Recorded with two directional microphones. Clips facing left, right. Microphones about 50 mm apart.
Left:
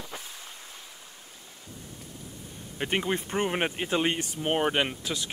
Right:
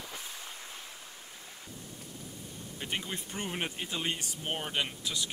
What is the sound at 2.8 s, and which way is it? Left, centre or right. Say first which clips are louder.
Speech: left 9 dB; left.